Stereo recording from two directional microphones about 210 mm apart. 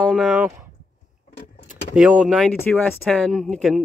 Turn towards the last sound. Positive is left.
turn(degrees=0)  # may be behind; listen again after turning